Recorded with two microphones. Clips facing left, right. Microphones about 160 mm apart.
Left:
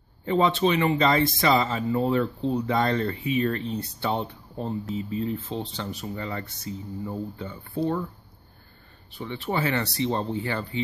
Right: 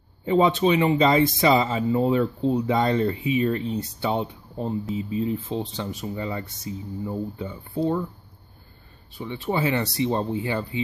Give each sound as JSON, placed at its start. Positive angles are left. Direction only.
{"t": 0.2, "sound": "speech", "side_deg": -15}
{"t": 9.2, "sound": "speech", "side_deg": -15}